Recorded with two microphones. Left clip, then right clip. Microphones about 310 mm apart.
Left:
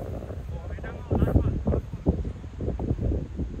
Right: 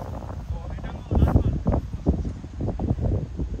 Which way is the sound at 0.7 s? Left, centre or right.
Centre.